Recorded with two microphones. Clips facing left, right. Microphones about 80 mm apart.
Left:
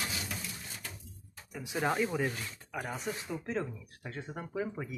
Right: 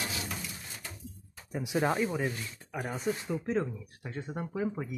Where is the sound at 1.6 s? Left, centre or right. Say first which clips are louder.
Right 2 dB; centre.